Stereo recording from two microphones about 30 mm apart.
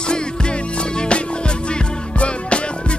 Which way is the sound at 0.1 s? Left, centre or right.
Left.